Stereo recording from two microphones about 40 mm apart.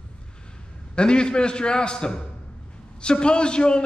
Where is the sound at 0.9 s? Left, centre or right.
Left.